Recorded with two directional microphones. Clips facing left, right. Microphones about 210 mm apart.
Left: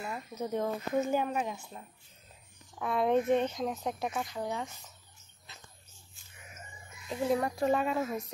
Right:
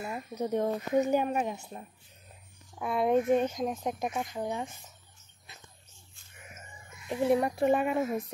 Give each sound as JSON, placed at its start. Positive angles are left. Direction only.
{"t": 0.0, "sound": "a sound", "side_deg": -15}
{"t": 0.5, "sound": "speech", "side_deg": -15}
{"t": 2.8, "sound": "speech", "side_deg": -10}
{"t": 7.1, "sound": "speech", "side_deg": -20}